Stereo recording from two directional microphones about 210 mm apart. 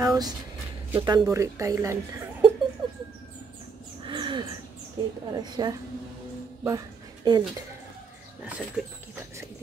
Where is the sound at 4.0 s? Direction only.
25° right (ahead or behind).